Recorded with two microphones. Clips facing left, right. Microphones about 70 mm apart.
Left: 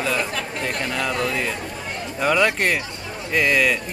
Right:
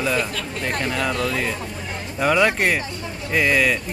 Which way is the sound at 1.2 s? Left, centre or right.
Centre.